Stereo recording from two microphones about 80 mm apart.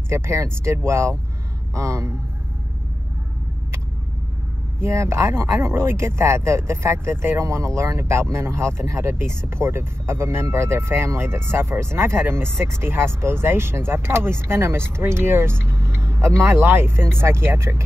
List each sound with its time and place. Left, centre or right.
0.1 s speech: right
4.7 s speech: right